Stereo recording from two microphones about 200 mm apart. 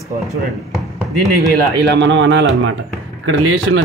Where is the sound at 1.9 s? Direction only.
65° right (ahead or behind).